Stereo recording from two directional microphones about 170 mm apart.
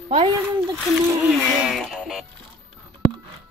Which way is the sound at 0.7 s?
15° right (ahead or behind).